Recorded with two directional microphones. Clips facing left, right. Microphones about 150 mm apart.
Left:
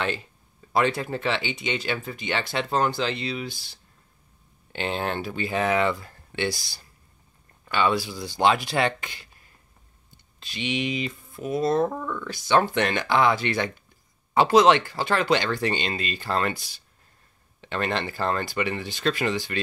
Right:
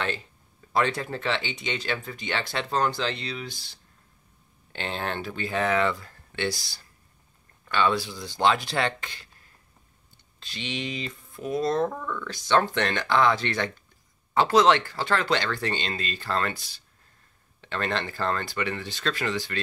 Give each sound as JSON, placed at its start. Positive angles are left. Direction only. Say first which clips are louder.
{"t": 0.7, "sound": "speech", "louder": "left 2 dB", "side_deg": 10}
{"t": 4.7, "sound": "speech", "louder": "left 3 dB", "side_deg": 10}
{"t": 10.4, "sound": "speech", "louder": "left 5 dB", "side_deg": 15}